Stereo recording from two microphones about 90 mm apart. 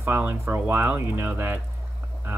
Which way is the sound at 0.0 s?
20° right (ahead or behind).